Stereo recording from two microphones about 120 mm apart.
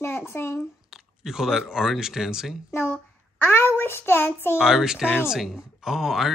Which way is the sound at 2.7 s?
20° left (ahead or behind).